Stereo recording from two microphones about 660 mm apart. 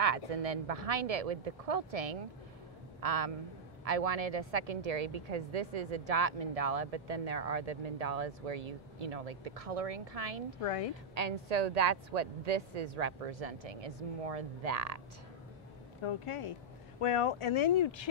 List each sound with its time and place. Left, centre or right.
0.0 s a woman's voice: right
10.6 s speech: left
11.1 s a woman's voice: right
16.0 s speech: left